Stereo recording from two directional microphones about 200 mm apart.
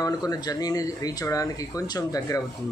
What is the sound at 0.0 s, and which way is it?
Speech, 20° left (ahead or behind).